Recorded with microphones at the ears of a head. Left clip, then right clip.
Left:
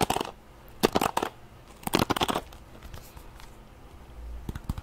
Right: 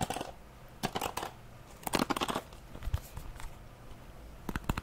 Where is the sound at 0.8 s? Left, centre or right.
Left.